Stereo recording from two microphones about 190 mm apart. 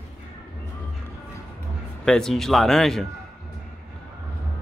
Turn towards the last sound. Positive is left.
turn(degrees=0)  # may be behind; listen again after turning